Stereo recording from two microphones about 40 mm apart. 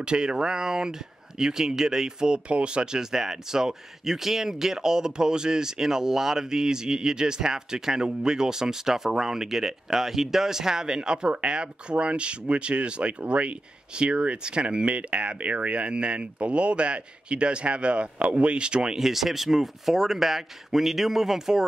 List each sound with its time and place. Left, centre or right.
0.0 s speech: right
18.9 s speech: centre